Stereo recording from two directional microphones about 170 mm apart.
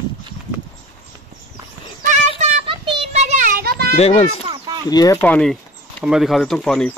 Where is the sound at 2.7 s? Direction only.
30° right (ahead or behind); by 3.9 s 60° right (ahead or behind).